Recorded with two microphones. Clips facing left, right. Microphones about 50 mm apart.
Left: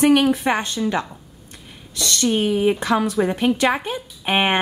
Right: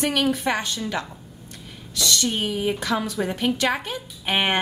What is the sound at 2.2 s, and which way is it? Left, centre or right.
A woman's voice, left.